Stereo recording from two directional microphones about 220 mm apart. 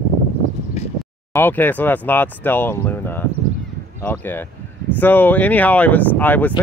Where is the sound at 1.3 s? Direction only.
10° left (ahead or behind).